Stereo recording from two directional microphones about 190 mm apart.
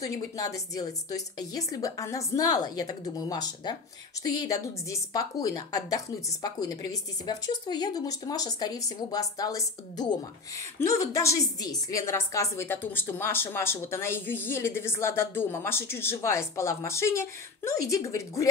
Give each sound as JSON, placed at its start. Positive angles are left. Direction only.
{"t": 0.0, "sound": "a woman's voice", "side_deg": 20}